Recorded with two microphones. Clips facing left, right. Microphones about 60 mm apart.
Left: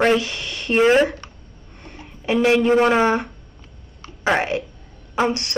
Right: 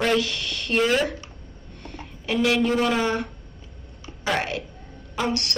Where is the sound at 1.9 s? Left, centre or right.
Left.